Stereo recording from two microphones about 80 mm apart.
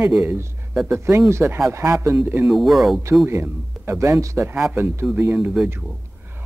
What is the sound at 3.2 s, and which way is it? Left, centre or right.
Speech, right.